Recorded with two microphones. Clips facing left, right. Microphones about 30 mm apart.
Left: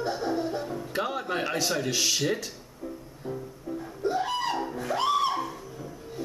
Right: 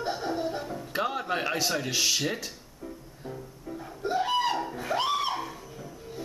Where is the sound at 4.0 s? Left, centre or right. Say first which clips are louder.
Right 2 dB; centre.